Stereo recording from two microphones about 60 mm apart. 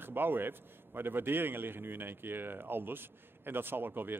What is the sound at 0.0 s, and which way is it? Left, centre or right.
A man's voice, right.